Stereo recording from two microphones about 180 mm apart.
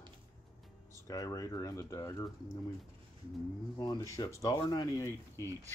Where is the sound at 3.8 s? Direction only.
20° left (ahead or behind).